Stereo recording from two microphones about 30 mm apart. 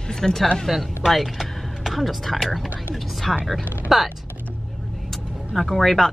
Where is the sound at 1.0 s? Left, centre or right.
Centre.